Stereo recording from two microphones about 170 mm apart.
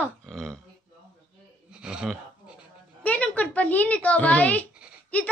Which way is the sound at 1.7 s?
5° right (ahead or behind).